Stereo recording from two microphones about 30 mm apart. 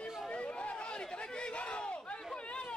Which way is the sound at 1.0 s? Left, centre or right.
Left.